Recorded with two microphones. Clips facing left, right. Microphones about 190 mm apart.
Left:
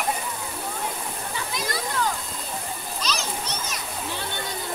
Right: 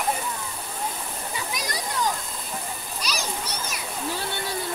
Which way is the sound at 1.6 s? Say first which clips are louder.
Left 2 dB; 15° right (ahead or behind).